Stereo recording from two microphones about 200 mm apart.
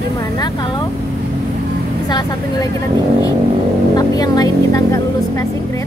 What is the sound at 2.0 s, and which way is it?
Speech, 20° left (ahead or behind).